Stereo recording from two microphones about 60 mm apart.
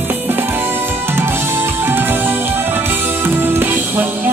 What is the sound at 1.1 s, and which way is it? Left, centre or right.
Music, right.